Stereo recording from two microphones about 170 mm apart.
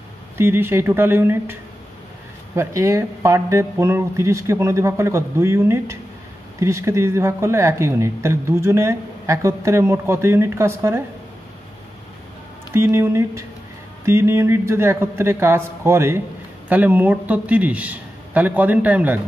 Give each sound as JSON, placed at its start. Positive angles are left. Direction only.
{"t": 0.4, "sound": "speech", "side_deg": -15}
{"t": 12.7, "sound": "speech", "side_deg": -15}